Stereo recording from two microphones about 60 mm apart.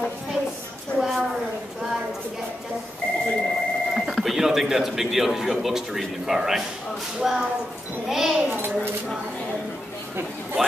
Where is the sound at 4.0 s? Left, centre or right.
Centre.